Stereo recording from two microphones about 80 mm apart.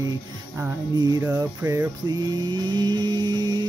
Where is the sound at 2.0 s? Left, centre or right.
Right.